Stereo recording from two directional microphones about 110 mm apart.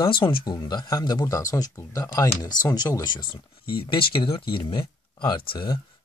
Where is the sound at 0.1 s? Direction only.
50° left (ahead or behind).